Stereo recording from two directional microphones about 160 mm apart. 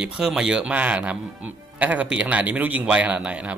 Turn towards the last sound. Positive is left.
turn(degrees=-10)  # may be behind; listen again after turning